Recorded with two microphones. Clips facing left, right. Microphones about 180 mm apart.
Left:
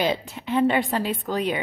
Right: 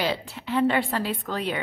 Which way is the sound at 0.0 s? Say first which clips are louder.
Left 3 dB; 20° left (ahead or behind).